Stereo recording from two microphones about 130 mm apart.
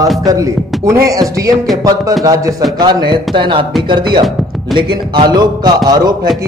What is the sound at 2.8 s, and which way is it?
A man's voice, 40° right (ahead or behind).